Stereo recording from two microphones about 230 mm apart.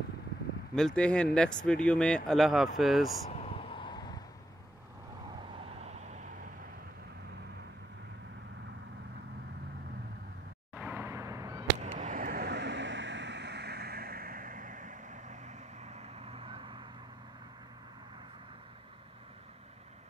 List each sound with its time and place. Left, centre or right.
0.7 s speech: centre
3.3 s vehicle: left
5.6 s vehicle: right
10.7 s a sound: centre
11.8 s vehicle: right